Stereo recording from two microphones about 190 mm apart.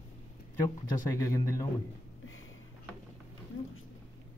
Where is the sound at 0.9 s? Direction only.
15° left (ahead or behind).